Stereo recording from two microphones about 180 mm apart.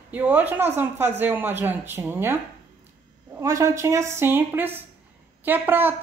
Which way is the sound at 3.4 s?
15° right (ahead or behind).